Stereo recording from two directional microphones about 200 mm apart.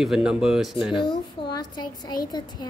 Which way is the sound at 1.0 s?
25° left (ahead or behind).